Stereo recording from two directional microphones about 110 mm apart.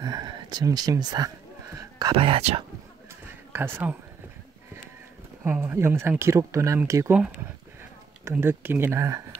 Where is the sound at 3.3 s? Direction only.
20° right (ahead or behind).